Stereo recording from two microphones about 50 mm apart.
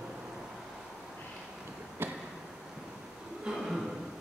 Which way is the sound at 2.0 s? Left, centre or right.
Right.